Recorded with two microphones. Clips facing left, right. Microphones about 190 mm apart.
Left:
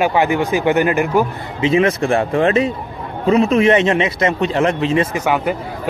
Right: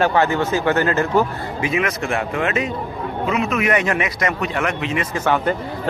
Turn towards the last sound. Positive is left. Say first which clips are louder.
# left 1 dB
turn(degrees=10)  # may be behind; listen again after turning